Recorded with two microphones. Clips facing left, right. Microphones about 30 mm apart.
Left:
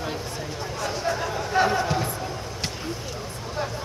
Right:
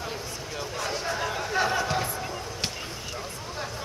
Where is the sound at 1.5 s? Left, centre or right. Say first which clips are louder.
Left 5 dB; centre.